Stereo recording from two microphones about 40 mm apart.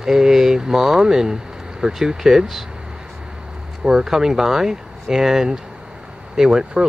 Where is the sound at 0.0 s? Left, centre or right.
Centre.